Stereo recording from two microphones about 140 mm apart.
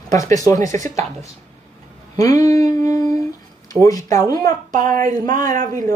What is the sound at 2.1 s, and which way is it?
Speech, 25° left (ahead or behind).